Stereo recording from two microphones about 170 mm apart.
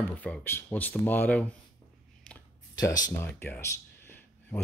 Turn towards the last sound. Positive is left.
turn(degrees=10)  # may be behind; listen again after turning